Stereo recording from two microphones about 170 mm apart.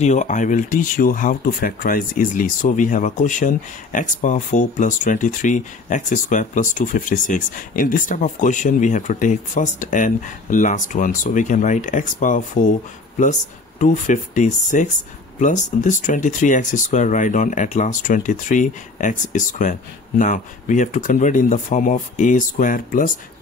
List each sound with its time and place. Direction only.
0.0 s speech: 45° left (ahead or behind)